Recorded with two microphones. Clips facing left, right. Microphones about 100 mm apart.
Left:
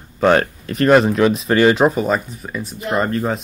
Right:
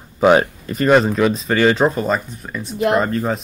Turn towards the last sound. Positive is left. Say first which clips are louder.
# right 2 dB
turn(degrees=0)  # may be behind; listen again after turning